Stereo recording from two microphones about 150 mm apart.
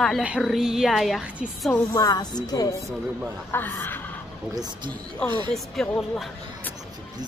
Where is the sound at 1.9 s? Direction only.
25° left (ahead or behind).